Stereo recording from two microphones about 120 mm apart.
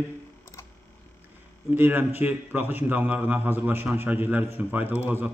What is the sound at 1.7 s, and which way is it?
A man's voice, 15° right (ahead or behind).